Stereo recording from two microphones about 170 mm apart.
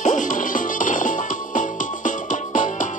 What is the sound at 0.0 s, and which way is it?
Music, 50° left (ahead or behind).